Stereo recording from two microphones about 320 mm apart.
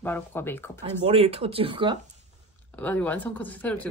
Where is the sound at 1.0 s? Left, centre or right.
Centre.